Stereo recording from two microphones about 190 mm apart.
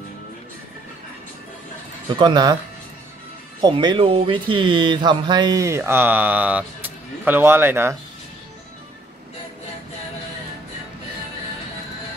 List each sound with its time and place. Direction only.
2.0 s speech: 20° right (ahead or behind)
3.6 s speech: 25° right (ahead or behind)